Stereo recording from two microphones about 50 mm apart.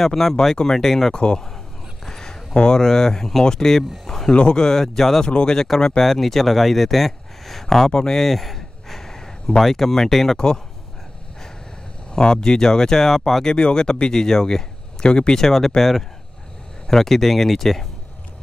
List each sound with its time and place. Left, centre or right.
0.0 s speech: centre
1.1 s speech: centre
4.3 s speech: centre
12.1 s speech: centre